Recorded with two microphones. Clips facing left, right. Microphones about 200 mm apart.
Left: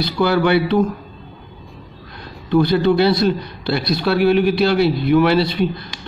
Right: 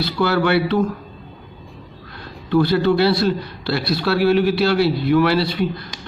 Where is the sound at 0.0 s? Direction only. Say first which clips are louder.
Left 2 dB; 15° left (ahead or behind).